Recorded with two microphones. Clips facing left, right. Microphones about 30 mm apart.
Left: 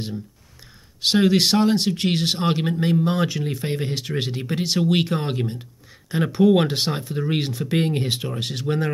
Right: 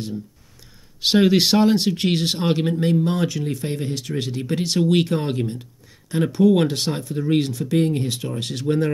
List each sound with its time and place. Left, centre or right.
1.0 s speech: centre; by 4.5 s left
4.5 s speech: centre; by 8.3 s left
8.3 s speech: centre